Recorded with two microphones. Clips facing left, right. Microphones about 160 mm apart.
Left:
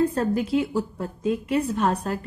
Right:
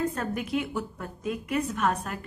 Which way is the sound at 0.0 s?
30° left (ahead or behind).